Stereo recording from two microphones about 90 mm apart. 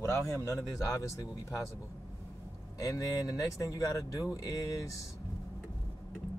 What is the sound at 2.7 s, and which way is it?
Speech, 40° left (ahead or behind).